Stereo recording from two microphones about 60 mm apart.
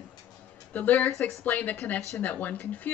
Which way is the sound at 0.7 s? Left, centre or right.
Left.